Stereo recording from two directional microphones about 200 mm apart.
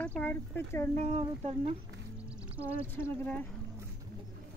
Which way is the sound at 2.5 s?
10° right (ahead or behind).